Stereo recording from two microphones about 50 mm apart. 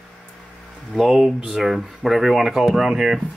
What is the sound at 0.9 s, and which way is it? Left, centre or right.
Speech, centre.